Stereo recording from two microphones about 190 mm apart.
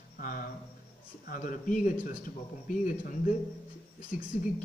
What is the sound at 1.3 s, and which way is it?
Speech, 45° left (ahead or behind).